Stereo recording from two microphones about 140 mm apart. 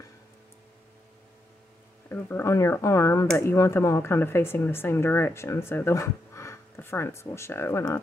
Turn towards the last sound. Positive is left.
turn(degrees=20)  # may be behind; listen again after turning